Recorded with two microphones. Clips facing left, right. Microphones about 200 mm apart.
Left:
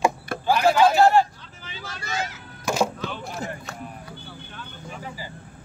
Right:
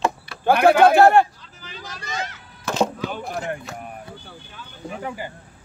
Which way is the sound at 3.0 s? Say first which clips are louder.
Right 3 dB; 50° right (ahead or behind).